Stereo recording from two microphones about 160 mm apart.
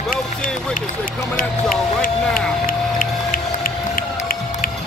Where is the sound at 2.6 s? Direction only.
60° left (ahead or behind).